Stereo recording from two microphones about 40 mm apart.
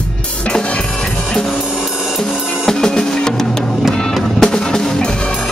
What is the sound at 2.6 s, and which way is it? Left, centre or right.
Music, centre.